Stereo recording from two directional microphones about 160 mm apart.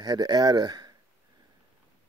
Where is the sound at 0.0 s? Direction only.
25° right (ahead or behind).